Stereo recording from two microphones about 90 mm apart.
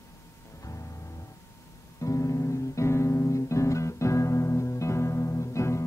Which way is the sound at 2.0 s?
35° left (ahead or behind).